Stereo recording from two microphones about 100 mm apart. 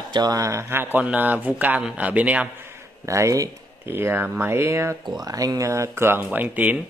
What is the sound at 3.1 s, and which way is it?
Speech, 30° right (ahead or behind).